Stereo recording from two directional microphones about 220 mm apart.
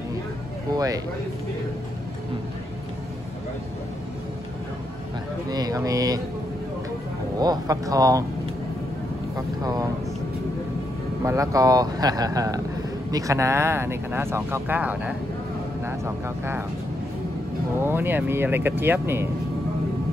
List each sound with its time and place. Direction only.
0.7 s speech: 15° right (ahead or behind)
5.5 s speech: 15° right (ahead or behind)
7.3 s speech: 15° right (ahead or behind)
9.6 s speech: 15° right (ahead or behind)
11.2 s speech: 15° right (ahead or behind)
17.7 s speech: 10° right (ahead or behind)